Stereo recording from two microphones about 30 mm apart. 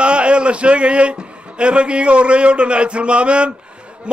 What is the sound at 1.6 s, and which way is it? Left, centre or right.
A man's voice, right.